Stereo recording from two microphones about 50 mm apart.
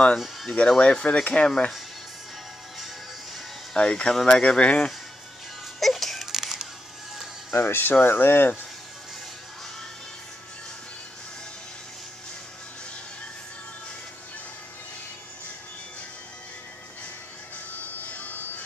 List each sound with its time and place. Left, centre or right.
0.5 s speech: centre
3.7 s speech: centre
5.8 s music: centre
7.5 s speech: left